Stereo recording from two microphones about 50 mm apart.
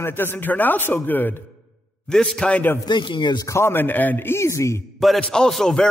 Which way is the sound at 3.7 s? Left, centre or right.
Left.